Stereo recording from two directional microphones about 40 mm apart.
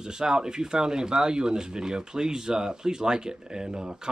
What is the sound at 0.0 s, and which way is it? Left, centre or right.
Speech, centre.